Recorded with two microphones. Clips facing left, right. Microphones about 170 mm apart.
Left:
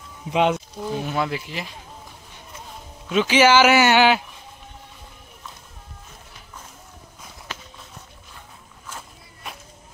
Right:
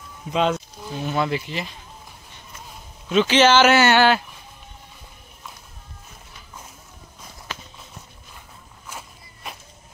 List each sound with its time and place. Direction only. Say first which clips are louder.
0.3 s speech: left 1 dB; 15° left (ahead or behind)
1.0 s speech: right 7 dB; 5° left (ahead or behind)
3.1 s speech: even; 10° left (ahead or behind)